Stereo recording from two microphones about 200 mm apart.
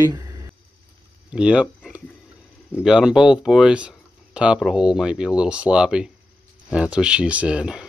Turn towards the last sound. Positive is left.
turn(degrees=-5)  # may be behind; listen again after turning